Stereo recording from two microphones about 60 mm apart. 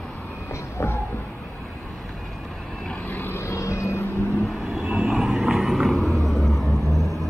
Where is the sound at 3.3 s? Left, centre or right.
Left.